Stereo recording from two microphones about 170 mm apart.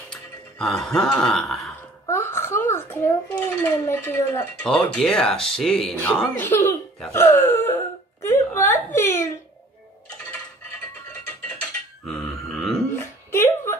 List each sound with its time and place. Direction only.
0.1 s speech: 5° left (ahead or behind)
2.0 s a child's voice: 15° left (ahead or behind)
4.6 s speech: 5° left (ahead or behind)
7.1 s whimper: 15° left (ahead or behind)
12.1 s grunt: centre (ahead or behind)
13.3 s a sound: 15° left (ahead or behind)